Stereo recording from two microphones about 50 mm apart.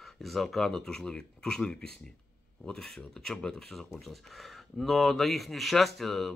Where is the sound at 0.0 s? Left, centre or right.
Centre.